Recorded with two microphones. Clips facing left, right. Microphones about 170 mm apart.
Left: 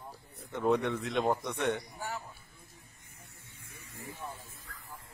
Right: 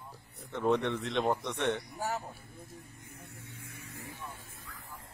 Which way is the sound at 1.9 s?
45° right (ahead or behind).